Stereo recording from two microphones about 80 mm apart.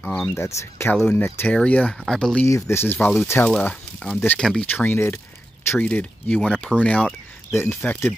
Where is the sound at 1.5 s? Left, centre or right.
Centre.